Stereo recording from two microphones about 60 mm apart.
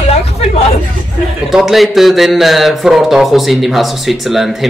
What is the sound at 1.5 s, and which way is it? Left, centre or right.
A man's voice, centre.